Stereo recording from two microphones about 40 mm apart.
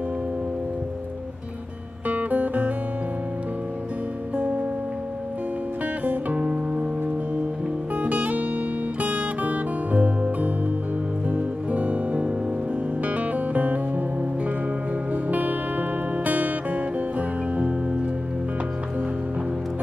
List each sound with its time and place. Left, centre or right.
2.0 s music: right
4.4 s music: right
6.0 s music: right
7.9 s music: right